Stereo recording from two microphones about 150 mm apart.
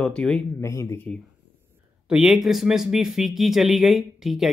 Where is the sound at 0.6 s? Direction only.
20° left (ahead or behind).